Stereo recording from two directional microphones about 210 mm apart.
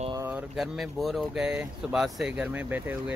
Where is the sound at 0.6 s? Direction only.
Centre (ahead or behind).